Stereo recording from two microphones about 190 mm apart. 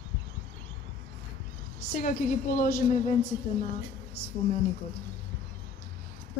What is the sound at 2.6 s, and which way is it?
Speech, 45° left (ahead or behind).